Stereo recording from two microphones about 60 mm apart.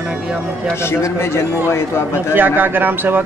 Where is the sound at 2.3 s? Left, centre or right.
Right.